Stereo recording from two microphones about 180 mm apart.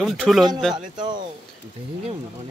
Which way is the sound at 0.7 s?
25° right (ahead or behind).